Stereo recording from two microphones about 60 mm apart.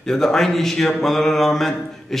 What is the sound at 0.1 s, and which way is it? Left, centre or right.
Speech, centre.